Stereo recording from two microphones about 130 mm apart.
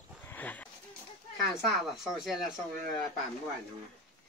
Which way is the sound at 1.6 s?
Centre (ahead or behind).